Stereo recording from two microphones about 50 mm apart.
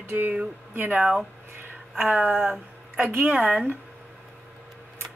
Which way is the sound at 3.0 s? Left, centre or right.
Right.